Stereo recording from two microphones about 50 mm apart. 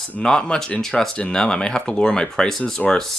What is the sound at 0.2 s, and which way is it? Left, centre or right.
Speech, centre.